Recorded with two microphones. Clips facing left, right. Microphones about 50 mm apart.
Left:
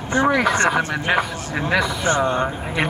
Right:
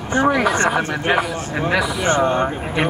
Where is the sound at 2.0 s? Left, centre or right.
Right.